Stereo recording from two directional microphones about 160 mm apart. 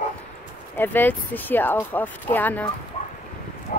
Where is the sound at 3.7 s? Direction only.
55° left (ahead or behind).